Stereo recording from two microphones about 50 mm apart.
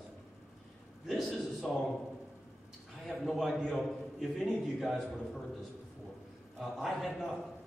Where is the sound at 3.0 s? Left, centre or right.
Centre.